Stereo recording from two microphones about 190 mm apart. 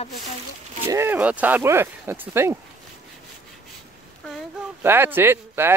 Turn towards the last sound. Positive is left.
turn(degrees=-10)  # may be behind; listen again after turning